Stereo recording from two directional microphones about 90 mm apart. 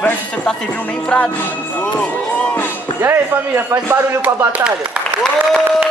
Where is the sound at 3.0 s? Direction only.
25° right (ahead or behind).